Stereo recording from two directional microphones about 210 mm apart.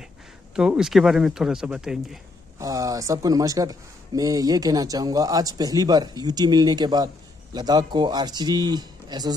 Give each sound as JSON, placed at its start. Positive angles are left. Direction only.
{"t": 0.6, "sound": "speech", "side_deg": -5}
{"t": 2.6, "sound": "speech", "side_deg": -15}